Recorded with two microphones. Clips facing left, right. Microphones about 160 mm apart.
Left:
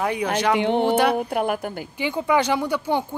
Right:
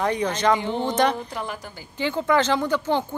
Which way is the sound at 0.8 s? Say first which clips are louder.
Left 3 dB; 10° left (ahead or behind).